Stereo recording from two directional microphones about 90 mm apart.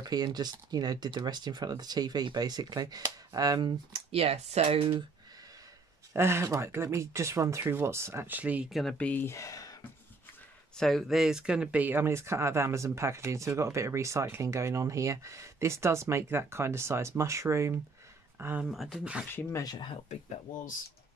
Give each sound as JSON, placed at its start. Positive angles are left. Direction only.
{"t": 0.0, "sound": "speech", "side_deg": -50}
{"t": 3.9, "sound": "speech", "side_deg": -90}
{"t": 6.1, "sound": "speech", "side_deg": -30}
{"t": 8.6, "sound": "speech", "side_deg": 0}
{"t": 8.9, "sound": "speech", "side_deg": 15}
{"t": 9.3, "sound": "speech", "side_deg": 40}
{"t": 10.8, "sound": "speech", "side_deg": 5}
{"t": 18.6, "sound": "speech", "side_deg": 0}
{"t": 19.6, "sound": "speech", "side_deg": 45}